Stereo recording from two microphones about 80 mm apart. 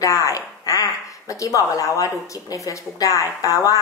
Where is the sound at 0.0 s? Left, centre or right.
Left.